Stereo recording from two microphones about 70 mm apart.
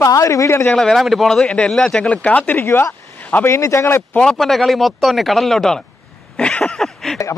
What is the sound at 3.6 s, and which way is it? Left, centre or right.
Speech, left.